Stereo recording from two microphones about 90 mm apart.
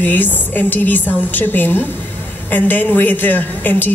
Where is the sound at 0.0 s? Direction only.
20° left (ahead or behind).